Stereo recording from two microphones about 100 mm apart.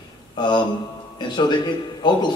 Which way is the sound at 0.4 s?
50° left (ahead or behind).